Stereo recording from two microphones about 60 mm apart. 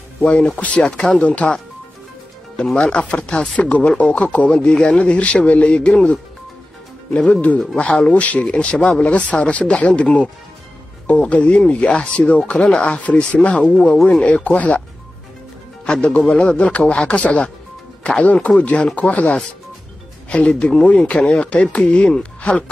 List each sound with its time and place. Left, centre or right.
0.2 s speech: centre
7.7 s speech: left
12.5 s speech: centre
15.8 s speech: centre